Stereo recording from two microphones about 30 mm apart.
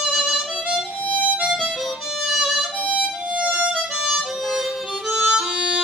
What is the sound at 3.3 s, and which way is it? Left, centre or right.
Harmonica, right.